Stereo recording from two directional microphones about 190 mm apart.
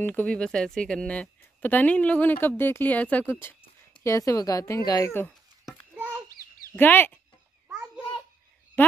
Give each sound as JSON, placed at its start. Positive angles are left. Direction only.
{"t": 0.0, "sound": "speech", "side_deg": 10}
{"t": 5.7, "sound": "a sound", "side_deg": -10}
{"t": 6.7, "sound": "speech", "side_deg": 10}
{"t": 7.6, "sound": "babbling", "side_deg": -10}